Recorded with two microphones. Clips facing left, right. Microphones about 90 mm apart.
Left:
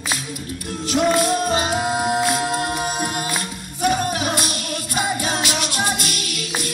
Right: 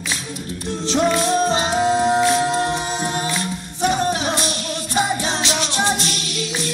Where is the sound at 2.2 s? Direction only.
30° right (ahead or behind).